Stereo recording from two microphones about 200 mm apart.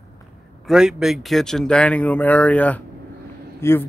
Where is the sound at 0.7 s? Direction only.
5° right (ahead or behind).